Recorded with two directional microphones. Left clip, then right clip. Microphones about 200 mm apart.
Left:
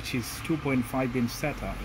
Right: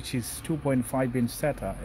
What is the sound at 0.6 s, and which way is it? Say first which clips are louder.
Speech: right 4 dB; 45° right (ahead or behind).